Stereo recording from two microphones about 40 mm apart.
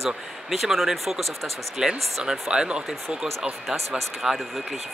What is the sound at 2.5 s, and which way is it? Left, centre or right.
Speech, right.